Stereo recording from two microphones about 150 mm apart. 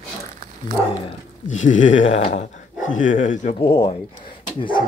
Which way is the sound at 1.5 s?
55° left (ahead or behind).